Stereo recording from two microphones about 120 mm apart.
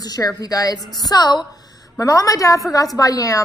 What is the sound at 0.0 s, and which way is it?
A woman's voice, 35° left (ahead or behind).